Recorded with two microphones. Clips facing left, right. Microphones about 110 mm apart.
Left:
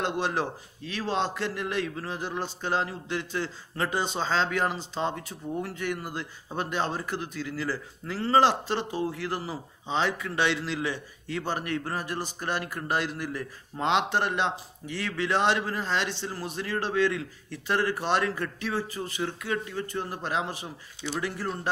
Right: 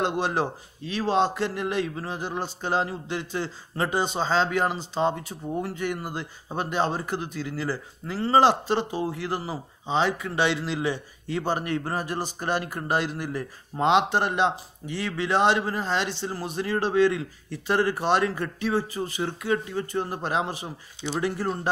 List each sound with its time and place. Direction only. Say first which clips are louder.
0.0 s speech: right 3 dB; 20° right (ahead or behind)